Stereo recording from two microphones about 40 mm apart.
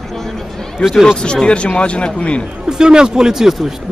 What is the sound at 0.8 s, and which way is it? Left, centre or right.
Speech, centre.